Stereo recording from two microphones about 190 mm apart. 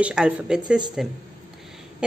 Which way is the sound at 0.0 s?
5° right (ahead or behind).